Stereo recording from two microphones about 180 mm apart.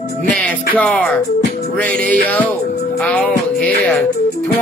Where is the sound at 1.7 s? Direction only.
10° left (ahead or behind).